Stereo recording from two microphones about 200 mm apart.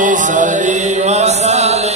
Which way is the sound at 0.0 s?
40° right (ahead or behind).